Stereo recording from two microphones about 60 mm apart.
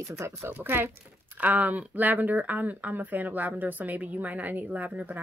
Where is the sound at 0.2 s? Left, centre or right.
Right.